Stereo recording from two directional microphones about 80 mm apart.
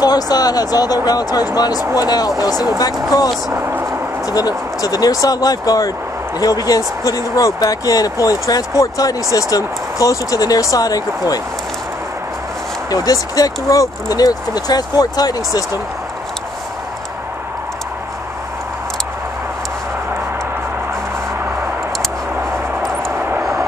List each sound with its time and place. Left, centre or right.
0.0 s speech: left
3.5 s speech: right
4.3 s speech: left
12.9 s speech: left